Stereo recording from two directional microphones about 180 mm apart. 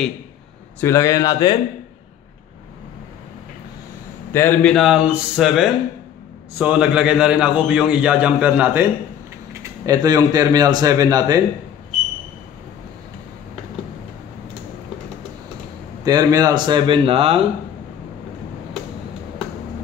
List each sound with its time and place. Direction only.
0.7 s a man's voice: 15° left (ahead or behind)
4.3 s a man's voice: 10° left (ahead or behind); by 11.4 s 20° right (ahead or behind)
16.0 s speech: 20° right (ahead or behind)